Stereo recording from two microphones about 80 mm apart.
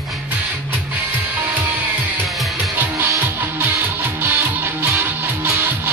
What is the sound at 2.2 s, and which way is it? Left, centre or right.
Music, centre.